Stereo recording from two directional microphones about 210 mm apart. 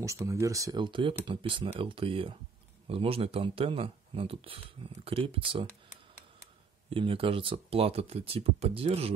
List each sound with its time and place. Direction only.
0.0 s speech: 15° right (ahead or behind)
6.9 s speech: 25° right (ahead or behind)